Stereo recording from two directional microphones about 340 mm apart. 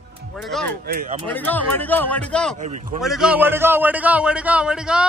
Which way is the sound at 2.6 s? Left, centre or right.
Right.